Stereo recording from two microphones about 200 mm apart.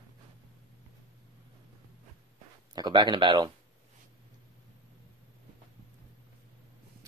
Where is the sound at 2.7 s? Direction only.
20° right (ahead or behind).